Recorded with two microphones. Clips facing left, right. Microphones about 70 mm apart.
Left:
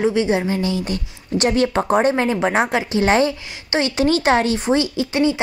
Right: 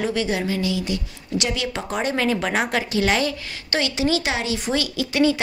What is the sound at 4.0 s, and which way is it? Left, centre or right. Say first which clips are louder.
A woman's voice: left 9 dB; left.